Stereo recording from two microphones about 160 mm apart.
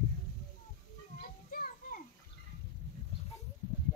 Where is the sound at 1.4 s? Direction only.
60° left (ahead or behind).